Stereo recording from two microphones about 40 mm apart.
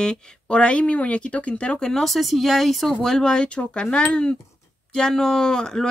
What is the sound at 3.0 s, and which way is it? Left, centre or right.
Speech, centre.